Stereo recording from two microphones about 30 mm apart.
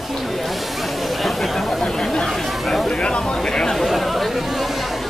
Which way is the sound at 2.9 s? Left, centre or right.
Left.